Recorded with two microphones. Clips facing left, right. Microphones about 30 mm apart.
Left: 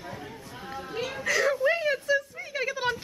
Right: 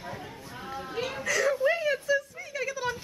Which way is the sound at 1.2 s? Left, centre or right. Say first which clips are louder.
Left 1 dB; centre.